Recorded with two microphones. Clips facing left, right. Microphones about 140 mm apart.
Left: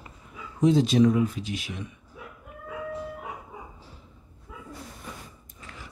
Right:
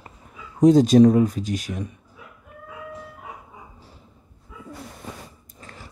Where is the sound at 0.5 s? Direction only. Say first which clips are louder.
Right 7 dB; 40° right (ahead or behind).